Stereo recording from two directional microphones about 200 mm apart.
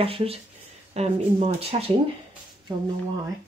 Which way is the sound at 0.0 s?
30° right (ahead or behind).